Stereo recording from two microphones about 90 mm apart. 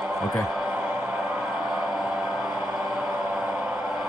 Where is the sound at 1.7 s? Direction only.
5° right (ahead or behind).